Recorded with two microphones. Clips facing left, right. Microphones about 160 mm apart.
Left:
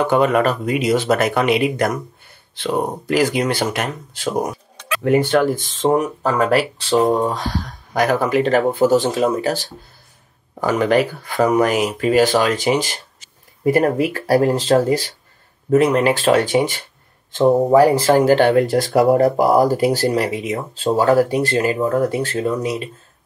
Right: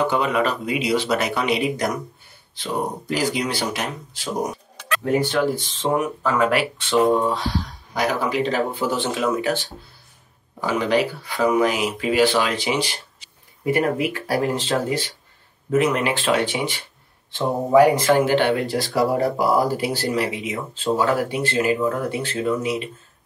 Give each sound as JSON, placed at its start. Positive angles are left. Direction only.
{"t": 0.1, "sound": "speech", "side_deg": 50}